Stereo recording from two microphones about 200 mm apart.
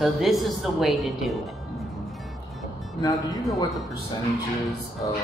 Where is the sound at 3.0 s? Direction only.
15° left (ahead or behind).